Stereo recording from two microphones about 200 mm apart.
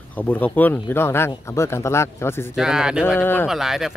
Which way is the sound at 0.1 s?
10° left (ahead or behind).